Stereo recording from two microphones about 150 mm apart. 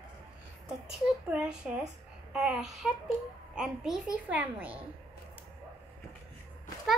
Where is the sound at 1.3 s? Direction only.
5° right (ahead or behind).